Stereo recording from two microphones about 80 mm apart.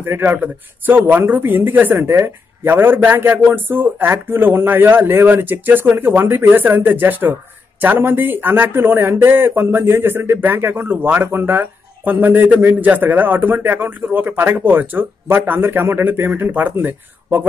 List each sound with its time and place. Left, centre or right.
0.0 s a man's voice: right